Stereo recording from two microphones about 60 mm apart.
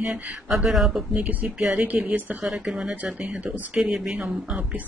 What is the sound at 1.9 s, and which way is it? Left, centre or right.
Speech, right.